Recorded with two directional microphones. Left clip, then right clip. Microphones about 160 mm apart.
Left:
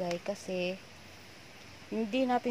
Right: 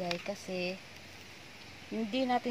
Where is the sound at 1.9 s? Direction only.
10° left (ahead or behind).